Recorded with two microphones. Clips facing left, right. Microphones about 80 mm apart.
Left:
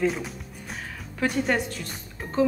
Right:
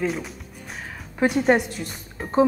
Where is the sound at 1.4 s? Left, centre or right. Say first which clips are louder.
Right 6 dB; right.